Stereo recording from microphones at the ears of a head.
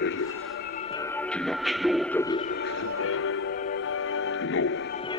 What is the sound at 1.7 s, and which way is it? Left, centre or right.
Music, centre.